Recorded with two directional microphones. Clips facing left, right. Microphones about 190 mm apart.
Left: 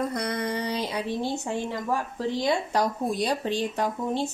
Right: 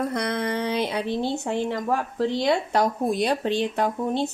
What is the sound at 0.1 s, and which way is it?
Speech, 60° right (ahead or behind).